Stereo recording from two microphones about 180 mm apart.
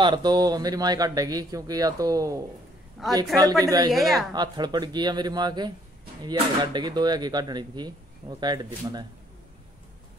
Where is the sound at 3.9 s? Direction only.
Centre (ahead or behind).